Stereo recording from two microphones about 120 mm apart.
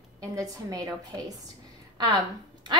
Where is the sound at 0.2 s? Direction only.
30° right (ahead or behind).